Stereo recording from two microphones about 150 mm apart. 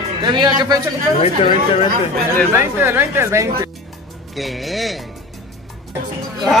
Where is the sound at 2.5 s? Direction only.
15° right (ahead or behind).